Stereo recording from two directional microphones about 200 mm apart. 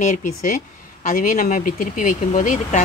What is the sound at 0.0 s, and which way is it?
Speech, 40° left (ahead or behind).